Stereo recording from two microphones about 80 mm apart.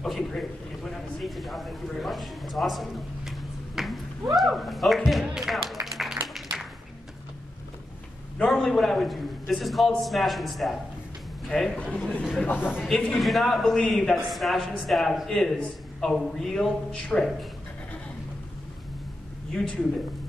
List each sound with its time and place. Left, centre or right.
0.0 s a man's voice: centre
5.9 s a sound: centre
8.5 s a man's voice: centre
12.4 s a man's voice: left
13.2 s a man's voice: centre
19.6 s a man's voice: centre